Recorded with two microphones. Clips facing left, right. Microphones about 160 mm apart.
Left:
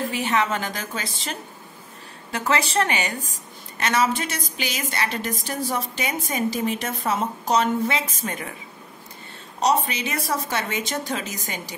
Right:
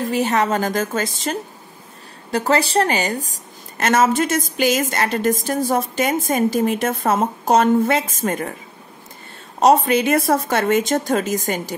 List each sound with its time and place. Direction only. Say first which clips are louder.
0.1 s a woman's voice: right 8 dB; 40° right (ahead or behind)
9.6 s a woman's voice: right 8 dB; 55° right (ahead or behind)